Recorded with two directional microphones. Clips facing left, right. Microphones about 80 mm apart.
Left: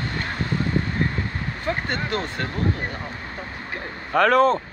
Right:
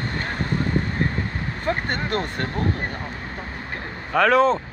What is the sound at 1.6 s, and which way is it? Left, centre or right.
Speech, right.